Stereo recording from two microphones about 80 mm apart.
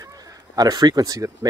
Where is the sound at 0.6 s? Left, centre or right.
Right.